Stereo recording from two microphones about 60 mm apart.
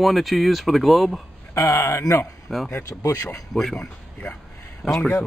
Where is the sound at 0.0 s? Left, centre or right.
Centre.